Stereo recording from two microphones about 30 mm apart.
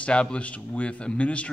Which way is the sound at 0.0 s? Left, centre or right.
Left.